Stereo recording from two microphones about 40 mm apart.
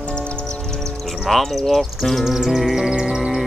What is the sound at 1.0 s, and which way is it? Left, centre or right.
Speech, centre.